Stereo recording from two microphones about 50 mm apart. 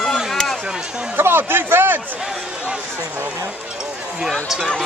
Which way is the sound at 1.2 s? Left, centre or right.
Right.